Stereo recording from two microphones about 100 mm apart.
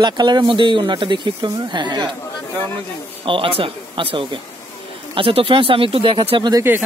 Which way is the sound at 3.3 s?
65° right (ahead or behind).